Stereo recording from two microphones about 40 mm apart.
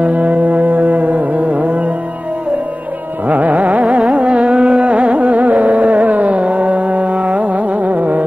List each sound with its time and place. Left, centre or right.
0.0 s music: right
3.3 s music: right
4.0 s carnatic music: right